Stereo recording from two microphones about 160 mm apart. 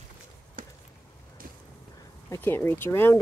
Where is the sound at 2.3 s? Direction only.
15° left (ahead or behind).